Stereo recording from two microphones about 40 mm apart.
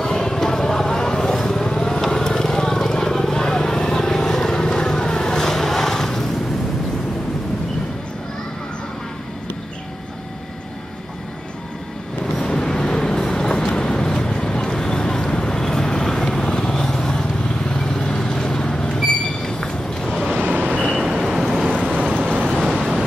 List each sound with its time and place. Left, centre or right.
0.0 s vehicle: centre
12.4 s vehicle: centre
20.3 s vehicle: right
21.1 s vehicle: centre
21.7 s vehicle: right
22.5 s vehicle: centre